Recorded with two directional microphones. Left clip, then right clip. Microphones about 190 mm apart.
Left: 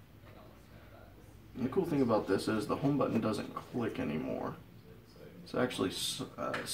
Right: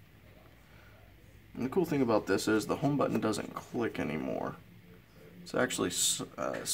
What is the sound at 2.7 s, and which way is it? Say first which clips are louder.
Speech: right 2 dB; 20° right (ahead or behind).